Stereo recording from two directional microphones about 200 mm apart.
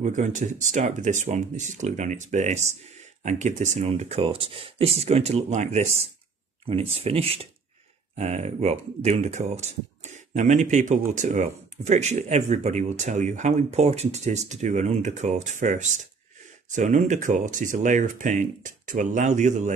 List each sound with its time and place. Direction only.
0.0 s speech: 35° right (ahead or behind)